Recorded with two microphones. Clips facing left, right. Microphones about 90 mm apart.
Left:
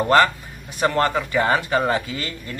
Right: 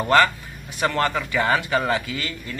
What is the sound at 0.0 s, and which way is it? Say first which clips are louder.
A man's voice: left 1 dB; 30° left (ahead or behind).